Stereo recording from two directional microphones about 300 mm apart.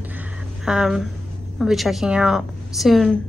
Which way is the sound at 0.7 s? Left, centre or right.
Centre.